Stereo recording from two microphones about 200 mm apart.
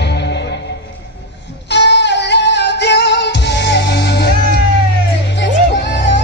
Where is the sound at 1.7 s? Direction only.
60° left (ahead or behind).